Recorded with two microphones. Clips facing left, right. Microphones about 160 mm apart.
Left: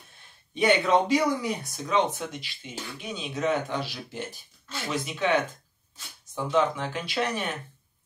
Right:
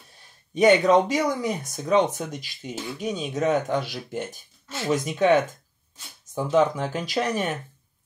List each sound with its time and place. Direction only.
0.6 s speech: 45° right (ahead or behind)